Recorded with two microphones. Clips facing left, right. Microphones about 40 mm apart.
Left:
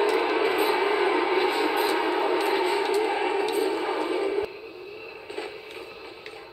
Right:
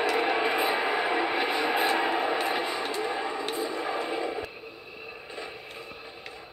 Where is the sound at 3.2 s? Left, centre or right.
Left.